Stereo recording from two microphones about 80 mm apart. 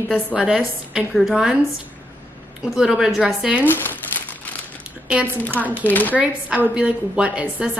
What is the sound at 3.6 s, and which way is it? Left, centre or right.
Speech, left.